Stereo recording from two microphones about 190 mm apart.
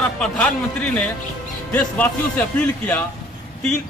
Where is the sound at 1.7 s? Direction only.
10° left (ahead or behind).